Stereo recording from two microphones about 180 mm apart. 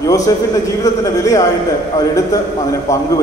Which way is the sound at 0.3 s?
20° left (ahead or behind).